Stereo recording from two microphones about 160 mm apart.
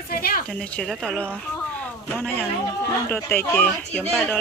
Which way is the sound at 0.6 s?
Centre (ahead or behind).